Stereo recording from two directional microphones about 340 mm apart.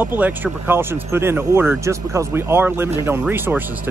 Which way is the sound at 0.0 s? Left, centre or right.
Centre.